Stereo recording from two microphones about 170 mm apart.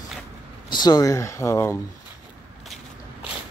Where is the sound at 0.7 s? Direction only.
25° left (ahead or behind).